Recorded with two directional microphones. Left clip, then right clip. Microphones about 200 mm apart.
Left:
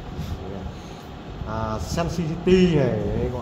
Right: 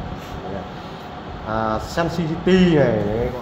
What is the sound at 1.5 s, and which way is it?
Speech, 55° left (ahead or behind).